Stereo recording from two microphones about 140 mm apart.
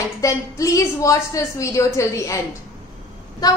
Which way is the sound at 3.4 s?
25° left (ahead or behind).